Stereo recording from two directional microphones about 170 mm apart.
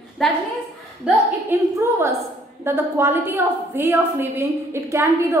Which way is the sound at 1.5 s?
15° right (ahead or behind).